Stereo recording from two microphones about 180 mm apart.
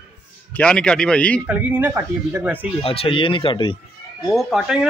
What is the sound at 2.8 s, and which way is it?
Speech, 30° left (ahead or behind).